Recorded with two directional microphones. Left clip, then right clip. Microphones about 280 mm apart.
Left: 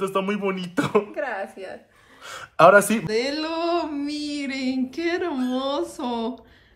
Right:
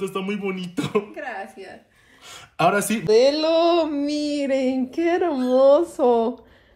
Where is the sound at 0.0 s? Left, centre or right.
Centre.